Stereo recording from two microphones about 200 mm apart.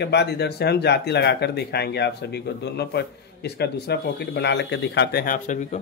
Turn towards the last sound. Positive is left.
turn(degrees=40)  # may be behind; listen again after turning